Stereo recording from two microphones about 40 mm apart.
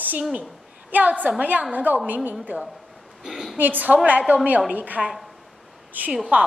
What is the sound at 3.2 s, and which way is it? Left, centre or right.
Speech, centre.